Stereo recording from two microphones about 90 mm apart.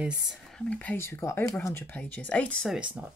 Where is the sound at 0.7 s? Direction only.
15° left (ahead or behind).